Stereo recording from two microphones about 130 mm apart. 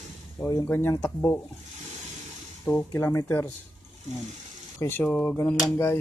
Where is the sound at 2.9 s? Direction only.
25° left (ahead or behind).